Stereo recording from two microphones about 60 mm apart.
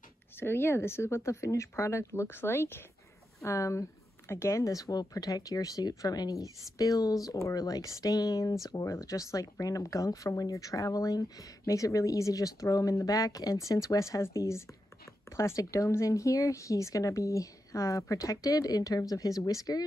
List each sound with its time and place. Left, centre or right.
0.4 s speech: left
3.4 s speech: left
8.9 s speech: left
11.6 s speech: left
13.0 s speech: left